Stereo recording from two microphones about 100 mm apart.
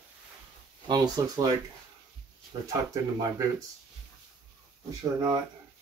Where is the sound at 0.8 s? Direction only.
40° right (ahead or behind).